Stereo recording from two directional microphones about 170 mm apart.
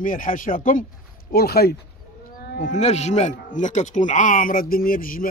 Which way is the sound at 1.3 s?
65° left (ahead or behind).